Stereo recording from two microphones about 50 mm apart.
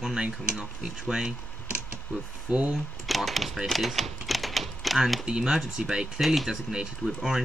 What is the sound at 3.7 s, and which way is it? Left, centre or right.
Typewriter, centre.